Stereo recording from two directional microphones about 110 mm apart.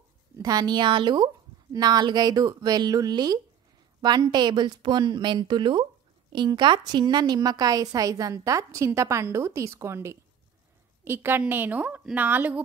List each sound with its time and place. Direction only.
0.4 s a woman's voice: 35° right (ahead or behind); by 12.6 s 15° right (ahead or behind)